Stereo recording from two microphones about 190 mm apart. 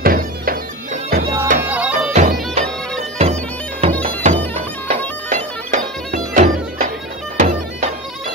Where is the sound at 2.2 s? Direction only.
40° right (ahead or behind).